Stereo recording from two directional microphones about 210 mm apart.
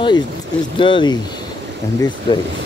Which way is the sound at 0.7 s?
25° left (ahead or behind).